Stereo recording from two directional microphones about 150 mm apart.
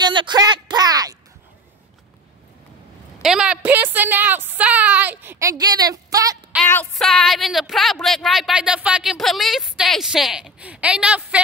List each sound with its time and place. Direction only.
0.0 s a sound: 30° right (ahead or behind)
3.2 s a woman's voice: 5° right (ahead or behind); by 6.3 s 25° right (ahead or behind)
6.6 s a woman's voice: 10° left (ahead or behind); by 11.4 s 10° right (ahead or behind)